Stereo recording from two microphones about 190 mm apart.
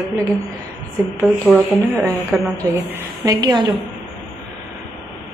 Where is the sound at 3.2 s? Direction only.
20° right (ahead or behind).